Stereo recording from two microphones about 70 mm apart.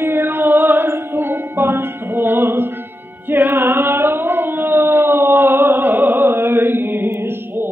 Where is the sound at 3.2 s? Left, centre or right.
Right.